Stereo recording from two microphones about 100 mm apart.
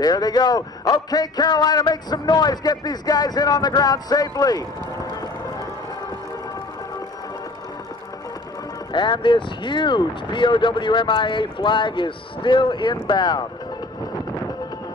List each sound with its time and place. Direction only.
0.0 s a man's voice: 40° left (ahead or behind)
8.9 s speech: 50° left (ahead or behind)